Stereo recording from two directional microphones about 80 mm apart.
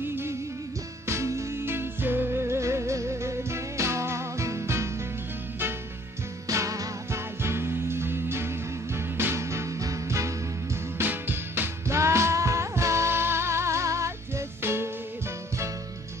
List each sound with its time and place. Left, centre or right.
0.0 s music: right
6.4 s music: right
11.0 s music: right